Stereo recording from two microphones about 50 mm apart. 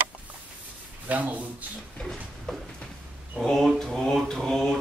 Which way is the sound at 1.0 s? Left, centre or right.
Right.